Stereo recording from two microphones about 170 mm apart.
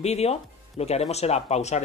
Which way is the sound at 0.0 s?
40° left (ahead or behind).